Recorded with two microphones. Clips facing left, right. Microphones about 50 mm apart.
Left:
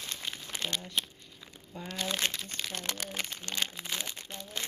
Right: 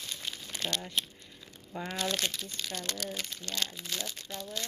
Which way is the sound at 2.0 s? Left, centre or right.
Left.